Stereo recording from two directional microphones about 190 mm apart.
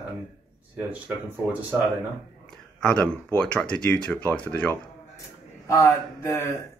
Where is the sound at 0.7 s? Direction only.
10° right (ahead or behind).